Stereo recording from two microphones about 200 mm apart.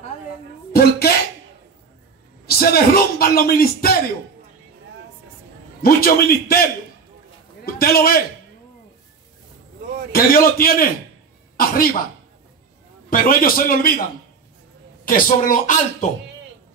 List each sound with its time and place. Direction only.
0.7 s a sound: 50° left (ahead or behind)
2.4 s a man's voice: 50° left (ahead or behind)
5.8 s a man's voice: 50° left (ahead or behind)
7.6 s a man's voice: 50° left (ahead or behind)
10.1 s a man's voice: 45° left (ahead or behind)
13.1 s a man's voice: 45° left (ahead or behind)
15.0 s speech: 40° left (ahead or behind)